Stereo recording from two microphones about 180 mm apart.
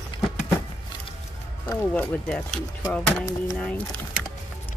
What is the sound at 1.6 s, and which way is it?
Speech, 10° left (ahead or behind).